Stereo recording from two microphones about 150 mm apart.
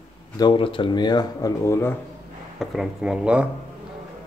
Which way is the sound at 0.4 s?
35° left (ahead or behind).